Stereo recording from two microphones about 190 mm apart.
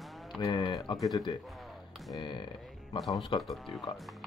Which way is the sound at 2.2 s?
25° left (ahead or behind).